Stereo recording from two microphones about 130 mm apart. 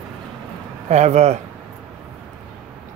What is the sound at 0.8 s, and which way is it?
Speech, 60° right (ahead or behind).